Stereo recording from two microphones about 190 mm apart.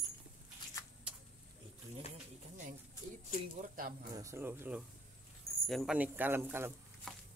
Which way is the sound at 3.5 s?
45° right (ahead or behind).